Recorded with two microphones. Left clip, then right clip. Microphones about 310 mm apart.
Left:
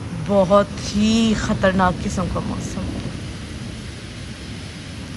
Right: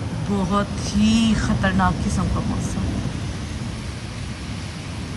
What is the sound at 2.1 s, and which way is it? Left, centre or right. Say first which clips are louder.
Speech: left 1 dB; centre.